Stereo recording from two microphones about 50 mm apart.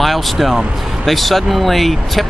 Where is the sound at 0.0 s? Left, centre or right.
Centre.